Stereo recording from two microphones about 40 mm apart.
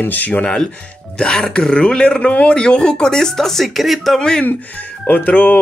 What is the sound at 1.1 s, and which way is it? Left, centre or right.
A man's voice, left.